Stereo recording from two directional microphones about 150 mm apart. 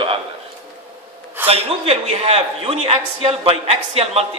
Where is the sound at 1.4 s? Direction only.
40° right (ahead or behind).